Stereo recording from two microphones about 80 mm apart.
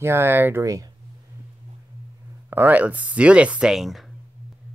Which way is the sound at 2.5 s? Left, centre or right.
Right.